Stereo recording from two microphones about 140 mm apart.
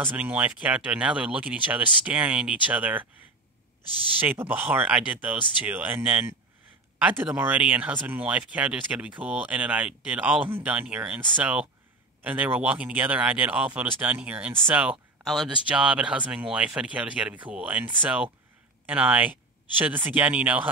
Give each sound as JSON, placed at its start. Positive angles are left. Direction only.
{"t": 0.0, "sound": "speech", "side_deg": -10}
{"t": 3.8, "sound": "speech", "side_deg": 30}
{"t": 4.2, "sound": "speech", "side_deg": -15}